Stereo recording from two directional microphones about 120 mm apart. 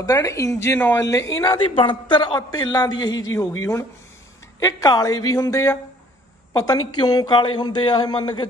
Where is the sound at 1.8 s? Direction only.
45° left (ahead or behind).